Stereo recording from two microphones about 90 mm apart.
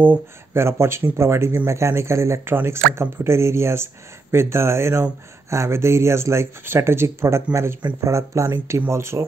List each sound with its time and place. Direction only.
0.0 s speech: 25° right (ahead or behind)